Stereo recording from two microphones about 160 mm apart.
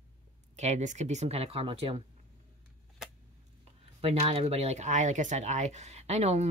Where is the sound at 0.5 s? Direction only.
45° right (ahead or behind).